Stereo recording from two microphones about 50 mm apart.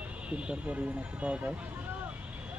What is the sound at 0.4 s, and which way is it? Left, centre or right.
Speech, right.